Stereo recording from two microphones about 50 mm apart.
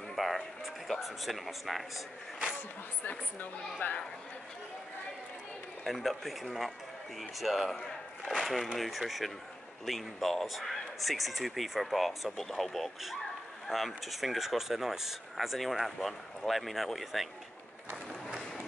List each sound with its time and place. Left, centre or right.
0.1 s music: centre
0.8 s speech: centre
3.0 s speech: left
5.9 s speech: centre